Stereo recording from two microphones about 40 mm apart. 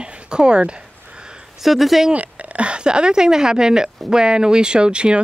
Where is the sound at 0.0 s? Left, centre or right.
Right.